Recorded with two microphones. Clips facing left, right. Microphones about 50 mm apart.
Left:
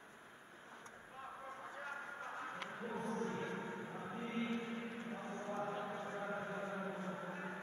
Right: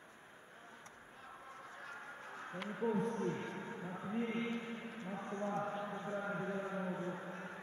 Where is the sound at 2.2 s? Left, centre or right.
Centre.